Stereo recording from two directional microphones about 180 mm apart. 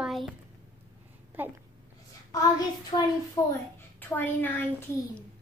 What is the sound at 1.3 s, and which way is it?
Speech, 10° right (ahead or behind).